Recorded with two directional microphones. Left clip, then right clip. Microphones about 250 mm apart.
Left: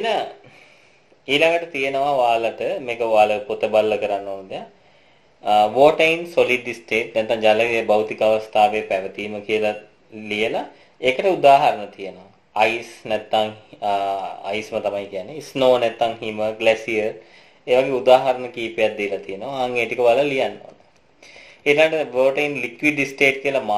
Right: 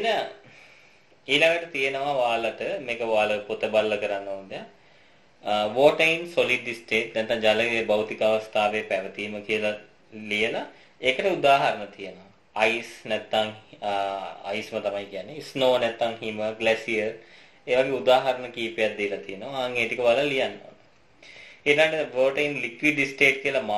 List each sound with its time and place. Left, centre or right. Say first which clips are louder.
1.2 s speech: left 4 dB; left
21.6 s speech: left 5 dB; left